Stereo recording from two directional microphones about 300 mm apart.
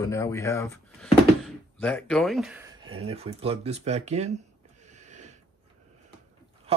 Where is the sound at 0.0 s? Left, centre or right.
Centre; by 4.4 s right.